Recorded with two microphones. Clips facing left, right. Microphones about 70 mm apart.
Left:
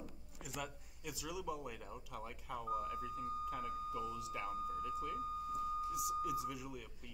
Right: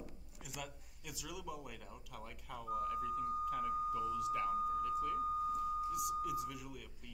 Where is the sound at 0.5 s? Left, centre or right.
Centre.